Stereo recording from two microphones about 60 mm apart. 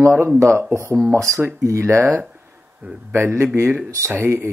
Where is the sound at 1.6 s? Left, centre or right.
Right.